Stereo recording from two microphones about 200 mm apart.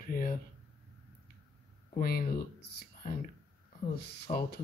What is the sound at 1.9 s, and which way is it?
Speech, 50° left (ahead or behind).